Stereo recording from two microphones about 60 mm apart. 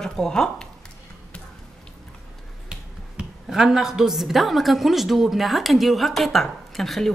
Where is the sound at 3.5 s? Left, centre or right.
Centre.